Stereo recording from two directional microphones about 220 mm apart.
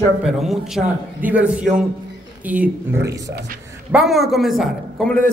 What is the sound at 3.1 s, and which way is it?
Speech, 50° right (ahead or behind).